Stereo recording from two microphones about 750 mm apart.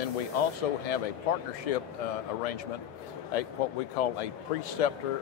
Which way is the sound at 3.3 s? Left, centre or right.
Left.